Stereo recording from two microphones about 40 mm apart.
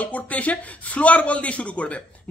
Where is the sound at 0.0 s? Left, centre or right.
Left.